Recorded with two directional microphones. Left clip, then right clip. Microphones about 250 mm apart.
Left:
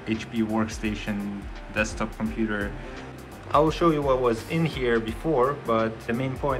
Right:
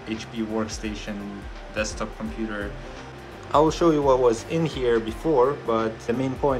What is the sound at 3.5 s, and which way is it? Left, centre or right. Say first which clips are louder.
Speech: right 2 dB; centre.